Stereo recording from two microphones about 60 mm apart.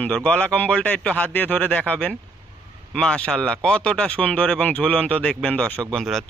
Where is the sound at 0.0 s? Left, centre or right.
Left.